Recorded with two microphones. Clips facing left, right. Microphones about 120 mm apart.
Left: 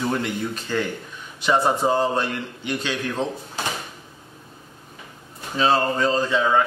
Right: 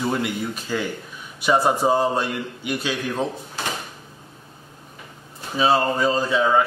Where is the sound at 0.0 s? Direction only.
10° right (ahead or behind).